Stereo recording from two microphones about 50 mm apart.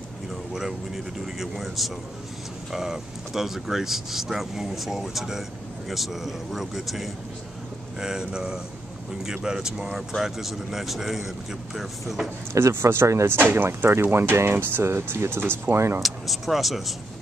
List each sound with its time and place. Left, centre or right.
0.3 s speech: centre
8.0 s speech: centre
12.5 s speech: right
13.4 s speech: right
15.7 s speech: right
16.0 s speech: centre